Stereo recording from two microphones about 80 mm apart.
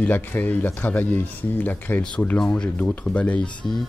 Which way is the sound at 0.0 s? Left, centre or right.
Left.